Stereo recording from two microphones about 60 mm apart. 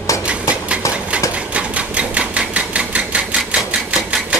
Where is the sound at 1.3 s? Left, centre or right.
Right.